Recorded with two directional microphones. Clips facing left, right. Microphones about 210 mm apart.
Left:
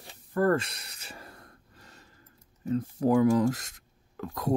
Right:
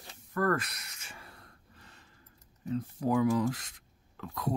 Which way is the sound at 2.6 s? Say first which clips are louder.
Left 5 dB; 45° left (ahead or behind).